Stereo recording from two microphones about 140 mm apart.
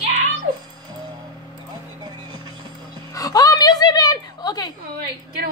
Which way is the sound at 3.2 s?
25° left (ahead or behind).